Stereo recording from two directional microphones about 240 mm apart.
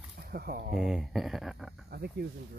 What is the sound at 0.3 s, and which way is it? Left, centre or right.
Speech, right.